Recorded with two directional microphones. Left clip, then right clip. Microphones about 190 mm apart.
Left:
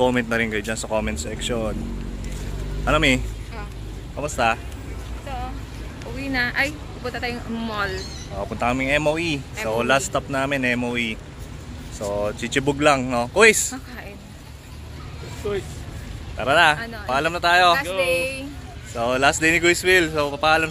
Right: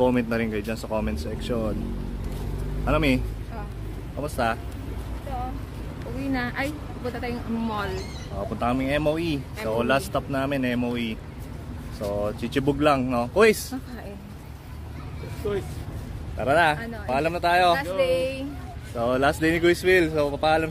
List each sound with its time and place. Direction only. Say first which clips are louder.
0.0 s speech: left 3 dB; 5° left (ahead or behind)
2.8 s speech: left 5 dB; 5° left (ahead or behind)
4.2 s speech: left 5 dB; 10° left (ahead or behind)
6.3 s speech: left 7 dB; 15° right (ahead or behind)
8.4 s speech: left 3 dB; 10° left (ahead or behind); by 13.7 s 10° right (ahead or behind)
15.4 s speech: left 2 dB; 45° left (ahead or behind)
16.3 s speech: left 4 dB; 10° right (ahead or behind)
18.0 s speech: left 2 dB; 20° right (ahead or behind)